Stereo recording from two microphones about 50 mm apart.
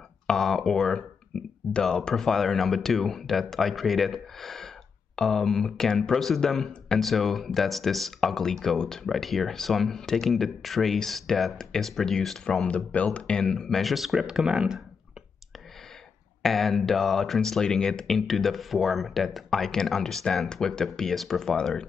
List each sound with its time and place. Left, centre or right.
0.3 s speech: centre
1.8 s speech: centre
12.6 s speech: left
13.4 s speech: centre
16.4 s speech: centre